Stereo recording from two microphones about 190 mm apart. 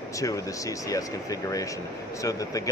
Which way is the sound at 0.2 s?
15° left (ahead or behind).